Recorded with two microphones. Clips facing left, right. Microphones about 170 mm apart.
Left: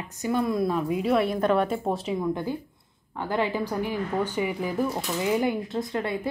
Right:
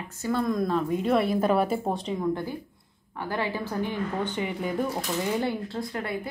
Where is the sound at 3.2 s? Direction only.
20° left (ahead or behind).